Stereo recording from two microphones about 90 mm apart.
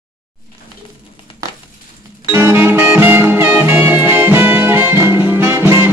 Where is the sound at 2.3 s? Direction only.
30° right (ahead or behind).